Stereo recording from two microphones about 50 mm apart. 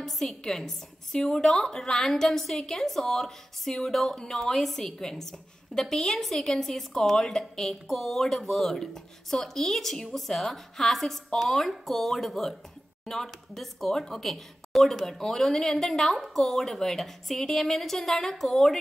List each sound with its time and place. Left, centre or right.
0.0 s a woman's voice: centre